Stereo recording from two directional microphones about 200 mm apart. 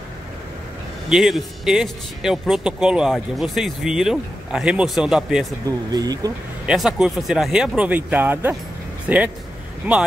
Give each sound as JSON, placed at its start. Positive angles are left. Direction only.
{"t": 1.1, "sound": "speech", "side_deg": 0}
{"t": 5.7, "sound": "speech", "side_deg": -20}
{"t": 6.6, "sound": "speech", "side_deg": -5}